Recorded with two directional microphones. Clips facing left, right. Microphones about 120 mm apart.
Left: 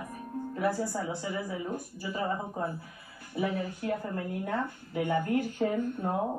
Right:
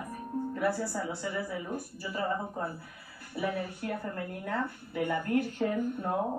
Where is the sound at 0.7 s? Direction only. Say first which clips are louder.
Left 1 dB; 20° left (ahead or behind).